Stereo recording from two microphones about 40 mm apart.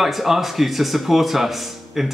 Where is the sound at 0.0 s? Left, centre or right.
Centre.